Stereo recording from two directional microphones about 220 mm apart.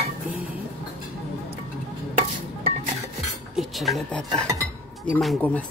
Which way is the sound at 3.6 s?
Centre (ahead or behind).